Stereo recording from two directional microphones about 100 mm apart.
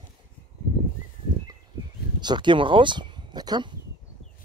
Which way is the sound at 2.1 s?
50° right (ahead or behind).